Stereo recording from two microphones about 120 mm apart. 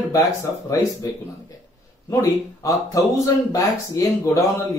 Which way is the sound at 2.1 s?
30° left (ahead or behind).